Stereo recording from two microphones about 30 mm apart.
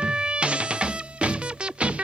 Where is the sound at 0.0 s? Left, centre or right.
Right.